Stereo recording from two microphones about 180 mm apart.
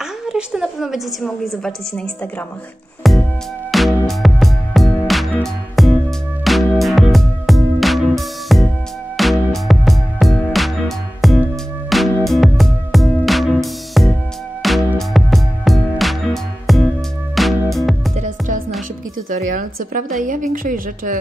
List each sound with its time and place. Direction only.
0.3 s a woman's voice: 5° right (ahead or behind)
3.0 s music: centre (ahead or behind)
18.1 s music: 40° right (ahead or behind)
19.3 s a woman's voice: 45° right (ahead or behind)